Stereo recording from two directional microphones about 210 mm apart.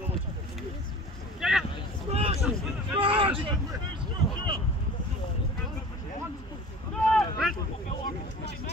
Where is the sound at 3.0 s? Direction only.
25° right (ahead or behind).